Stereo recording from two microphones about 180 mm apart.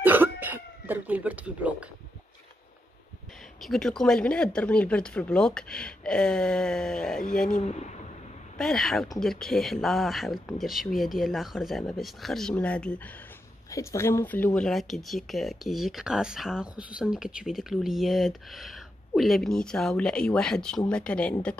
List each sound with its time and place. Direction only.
0.0 s cough: 10° right (ahead or behind)
3.6 s speech: centre (ahead or behind)
7.5 s speech: 40° left (ahead or behind)
8.5 s speech: centre (ahead or behind)